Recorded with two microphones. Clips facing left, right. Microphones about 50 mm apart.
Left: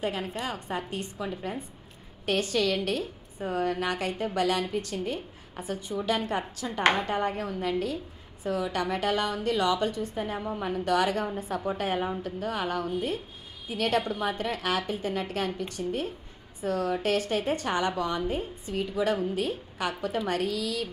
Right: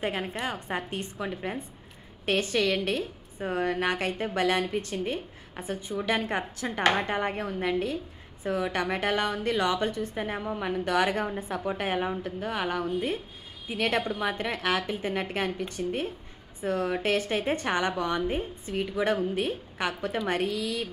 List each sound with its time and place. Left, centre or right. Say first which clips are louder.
0.3 s a woman's voice: right 1 dB; right